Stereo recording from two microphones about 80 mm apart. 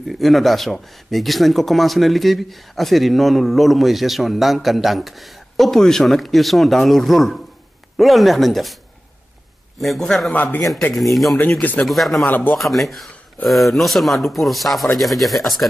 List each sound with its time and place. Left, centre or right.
0.0 s speech: centre
9.8 s speech: centre
10.3 s a man's voice: left
11.0 s speech: centre
12.3 s a man's voice: left
12.5 s speech: centre